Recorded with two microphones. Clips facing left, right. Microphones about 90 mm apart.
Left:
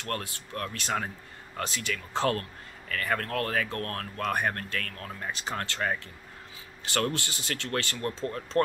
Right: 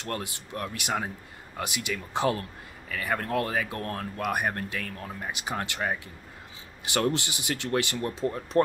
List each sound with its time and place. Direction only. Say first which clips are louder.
0.0 s speech: right 1 dB; 20° right (ahead or behind)